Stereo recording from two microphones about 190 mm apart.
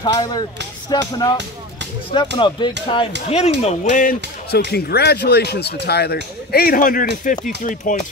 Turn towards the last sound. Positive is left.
turn(degrees=45)  # may be behind; listen again after turning